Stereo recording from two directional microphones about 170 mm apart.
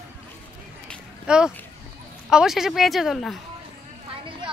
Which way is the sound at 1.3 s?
5° right (ahead or behind).